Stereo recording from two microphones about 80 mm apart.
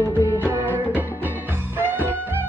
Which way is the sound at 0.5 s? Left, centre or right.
Right.